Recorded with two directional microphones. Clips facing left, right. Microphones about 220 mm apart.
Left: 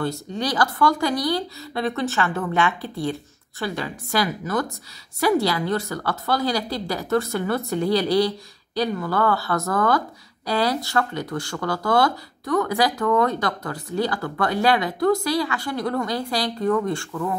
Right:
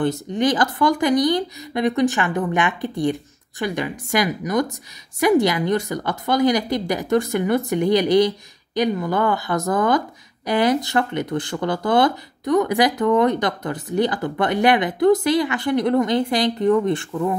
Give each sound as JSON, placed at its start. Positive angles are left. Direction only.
{"t": 0.0, "sound": "speech", "side_deg": -20}